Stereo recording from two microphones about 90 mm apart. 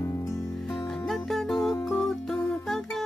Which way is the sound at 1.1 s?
Centre (ahead or behind).